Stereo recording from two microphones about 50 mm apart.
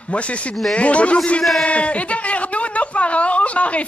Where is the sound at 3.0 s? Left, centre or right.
Left.